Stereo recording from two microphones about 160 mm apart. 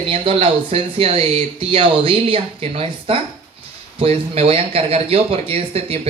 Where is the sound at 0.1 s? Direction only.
35° right (ahead or behind).